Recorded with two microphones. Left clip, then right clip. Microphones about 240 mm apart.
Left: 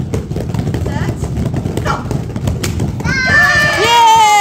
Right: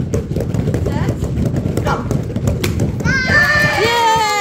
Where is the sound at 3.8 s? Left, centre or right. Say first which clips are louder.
Left 6 dB; left.